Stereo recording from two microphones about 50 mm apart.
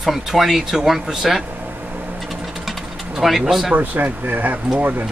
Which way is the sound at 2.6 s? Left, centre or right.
Centre.